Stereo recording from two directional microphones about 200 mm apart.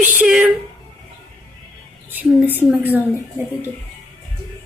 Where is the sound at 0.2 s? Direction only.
5° right (ahead or behind).